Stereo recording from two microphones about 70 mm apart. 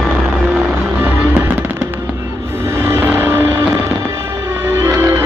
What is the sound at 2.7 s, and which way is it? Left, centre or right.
Music, right.